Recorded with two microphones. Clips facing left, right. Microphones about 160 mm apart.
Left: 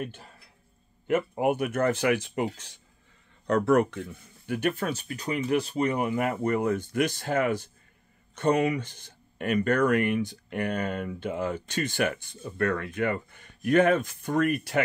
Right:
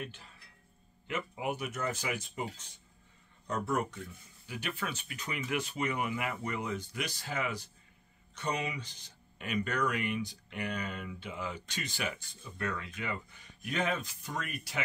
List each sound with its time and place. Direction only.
0.0 s speech: 50° left (ahead or behind); by 4.0 s 70° left (ahead or behind)
4.5 s speech: 50° left (ahead or behind)